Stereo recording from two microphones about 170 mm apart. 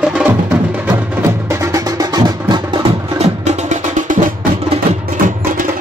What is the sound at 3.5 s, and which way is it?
Music, 45° right (ahead or behind).